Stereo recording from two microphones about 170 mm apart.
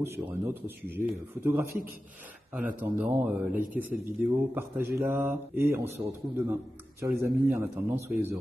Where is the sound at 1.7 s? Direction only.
60° right (ahead or behind).